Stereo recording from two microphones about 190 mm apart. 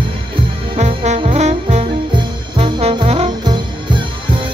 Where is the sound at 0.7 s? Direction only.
35° right (ahead or behind).